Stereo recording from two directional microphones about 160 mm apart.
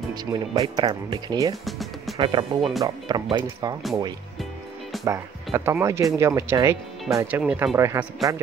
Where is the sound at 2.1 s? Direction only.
30° right (ahead or behind).